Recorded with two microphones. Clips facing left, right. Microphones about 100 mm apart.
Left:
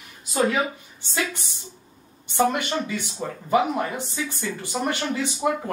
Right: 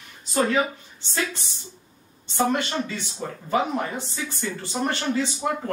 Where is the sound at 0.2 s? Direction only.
10° left (ahead or behind).